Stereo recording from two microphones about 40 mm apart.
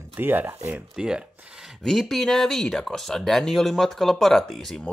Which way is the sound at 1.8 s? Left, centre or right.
Centre.